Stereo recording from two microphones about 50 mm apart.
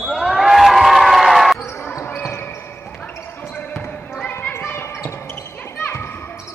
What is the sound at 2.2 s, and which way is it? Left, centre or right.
Basketball bounce, left.